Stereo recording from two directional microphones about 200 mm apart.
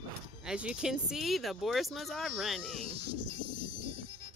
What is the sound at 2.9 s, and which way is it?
Music, 30° right (ahead or behind).